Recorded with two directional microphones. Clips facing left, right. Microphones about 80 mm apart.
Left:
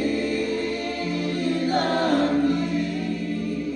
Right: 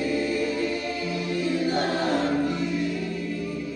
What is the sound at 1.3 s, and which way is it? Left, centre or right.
Music, left.